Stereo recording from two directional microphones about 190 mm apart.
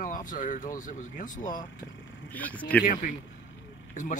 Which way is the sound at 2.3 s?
10° left (ahead or behind).